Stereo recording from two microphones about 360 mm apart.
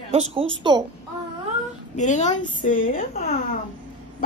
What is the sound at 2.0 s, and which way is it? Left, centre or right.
A woman's voice, centre.